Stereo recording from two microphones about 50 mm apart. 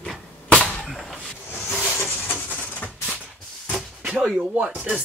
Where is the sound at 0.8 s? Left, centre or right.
Centre.